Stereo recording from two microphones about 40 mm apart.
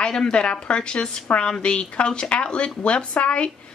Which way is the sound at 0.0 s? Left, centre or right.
Left.